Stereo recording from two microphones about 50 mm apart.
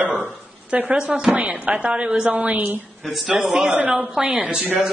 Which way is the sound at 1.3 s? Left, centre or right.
Right.